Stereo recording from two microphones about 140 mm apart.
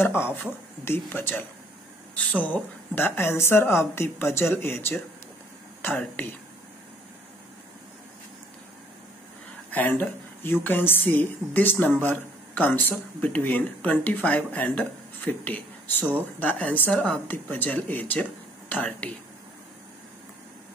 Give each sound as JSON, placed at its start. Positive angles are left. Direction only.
{"t": 0.0, "sound": "a woman's voice", "side_deg": 15}
{"t": 2.4, "sound": "a woman's voice", "side_deg": 10}
{"t": 9.7, "sound": "a woman's voice", "side_deg": 10}